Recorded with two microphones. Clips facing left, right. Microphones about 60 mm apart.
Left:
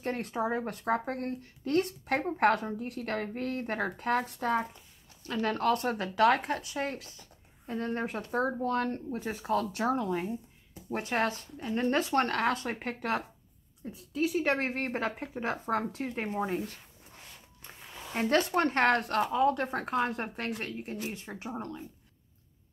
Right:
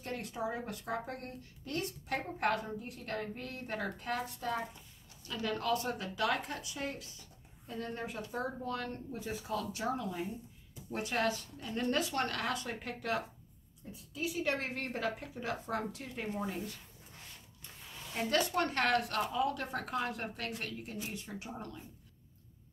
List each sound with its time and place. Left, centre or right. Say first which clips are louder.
0.0 s speech: left 6 dB; left
18.1 s speech: left 5 dB; left